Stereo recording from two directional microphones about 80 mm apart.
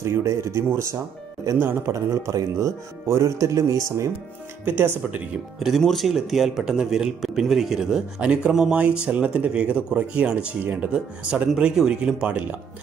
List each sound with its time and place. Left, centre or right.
0.0 s speech: right
4.6 s speech: right
5.6 s speech: centre; by 12.5 s right